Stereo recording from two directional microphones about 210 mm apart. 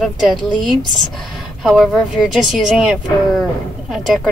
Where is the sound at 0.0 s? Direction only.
Centre (ahead or behind).